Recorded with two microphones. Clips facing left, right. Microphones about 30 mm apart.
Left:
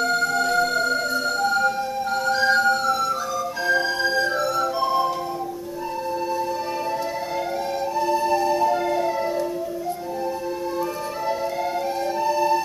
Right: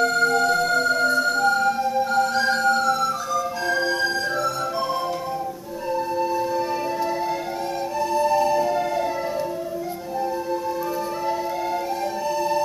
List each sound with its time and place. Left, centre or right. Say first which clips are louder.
0.0 s music: right 2 dB; centre
8.0 s music: right 2 dB; centre
12.3 s music: left 2 dB; centre